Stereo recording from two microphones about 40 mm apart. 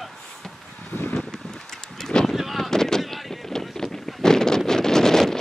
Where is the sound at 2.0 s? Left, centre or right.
Centre.